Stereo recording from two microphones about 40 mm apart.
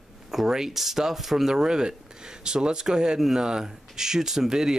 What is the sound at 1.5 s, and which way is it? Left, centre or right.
Speech, centre.